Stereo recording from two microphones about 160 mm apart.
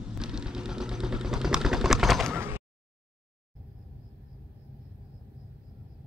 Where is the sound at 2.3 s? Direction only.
15° right (ahead or behind).